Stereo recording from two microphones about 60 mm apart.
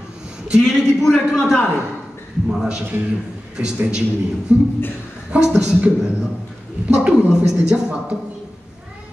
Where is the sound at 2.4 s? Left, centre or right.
Centre.